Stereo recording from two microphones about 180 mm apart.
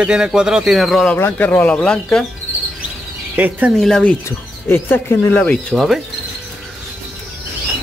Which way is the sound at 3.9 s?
5° left (ahead or behind).